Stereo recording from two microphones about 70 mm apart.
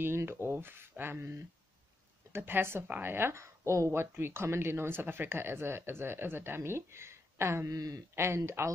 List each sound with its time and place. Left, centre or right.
0.0 s a woman's voice: right
7.7 s speech: right
8.1 s a woman's voice: right